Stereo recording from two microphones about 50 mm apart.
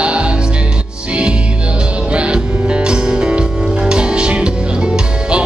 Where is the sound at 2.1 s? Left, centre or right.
Right.